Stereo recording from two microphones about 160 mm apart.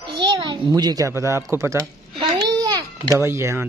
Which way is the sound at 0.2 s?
30° right (ahead or behind).